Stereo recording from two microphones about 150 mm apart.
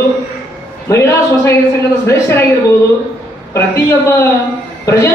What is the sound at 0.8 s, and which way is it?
Speech, 20° left (ahead or behind).